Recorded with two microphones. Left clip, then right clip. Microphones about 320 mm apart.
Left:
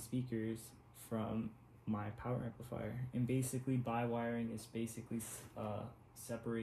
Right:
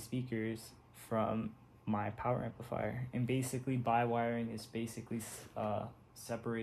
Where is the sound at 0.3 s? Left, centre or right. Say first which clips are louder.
Right 3 dB; centre.